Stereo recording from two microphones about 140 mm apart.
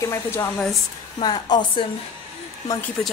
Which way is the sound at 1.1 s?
30° left (ahead or behind).